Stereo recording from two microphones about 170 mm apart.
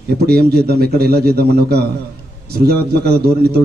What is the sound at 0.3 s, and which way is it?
A man's voice, 65° right (ahead or behind).